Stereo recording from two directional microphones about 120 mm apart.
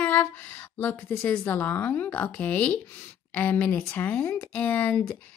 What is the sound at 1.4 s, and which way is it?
Speech, 15° left (ahead or behind).